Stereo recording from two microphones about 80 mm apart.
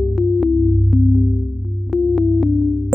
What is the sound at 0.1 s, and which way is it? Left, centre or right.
Music, centre.